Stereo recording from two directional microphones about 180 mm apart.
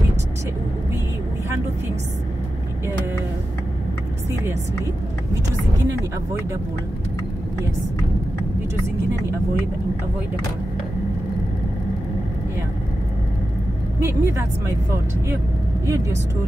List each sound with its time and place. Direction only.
5.3 s speech: 15° right (ahead or behind)
13.9 s speech: 15° right (ahead or behind)
15.9 s speech: 15° right (ahead or behind)